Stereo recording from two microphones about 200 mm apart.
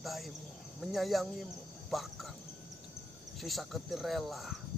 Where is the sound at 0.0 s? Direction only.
Centre (ahead or behind).